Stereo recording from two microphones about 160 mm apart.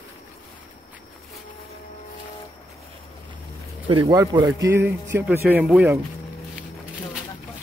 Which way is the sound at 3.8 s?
30° right (ahead or behind).